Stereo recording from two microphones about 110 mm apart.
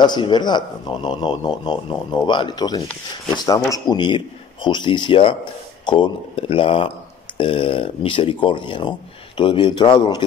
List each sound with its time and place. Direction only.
0.0 s a man's voice: 45° left (ahead or behind)